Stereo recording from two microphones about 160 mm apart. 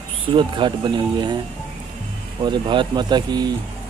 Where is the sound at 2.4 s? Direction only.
30° right (ahead or behind).